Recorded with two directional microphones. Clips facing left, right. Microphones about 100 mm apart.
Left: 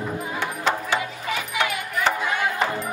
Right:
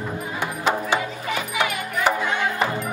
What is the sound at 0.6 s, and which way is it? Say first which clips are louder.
Music: right 2 dB; 15° right (ahead or behind).